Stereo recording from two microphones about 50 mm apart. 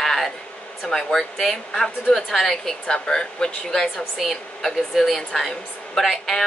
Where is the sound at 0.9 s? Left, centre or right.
Centre.